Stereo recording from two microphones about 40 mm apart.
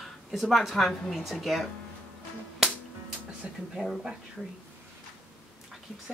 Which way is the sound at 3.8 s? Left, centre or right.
Centre.